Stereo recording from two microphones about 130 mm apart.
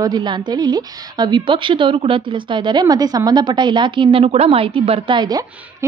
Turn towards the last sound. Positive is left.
turn(degrees=-35)  # may be behind; listen again after turning